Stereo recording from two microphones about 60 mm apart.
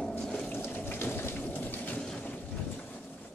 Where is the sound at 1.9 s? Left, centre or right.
Centre.